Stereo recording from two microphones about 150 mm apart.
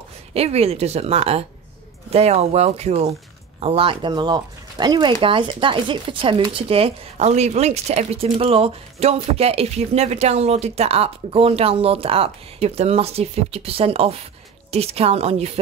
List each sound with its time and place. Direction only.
0.3 s speech: 45° right (ahead or behind)